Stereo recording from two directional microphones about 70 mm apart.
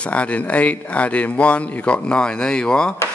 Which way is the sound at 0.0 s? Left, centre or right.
Centre.